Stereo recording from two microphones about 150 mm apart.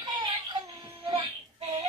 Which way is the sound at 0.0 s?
30° right (ahead or behind).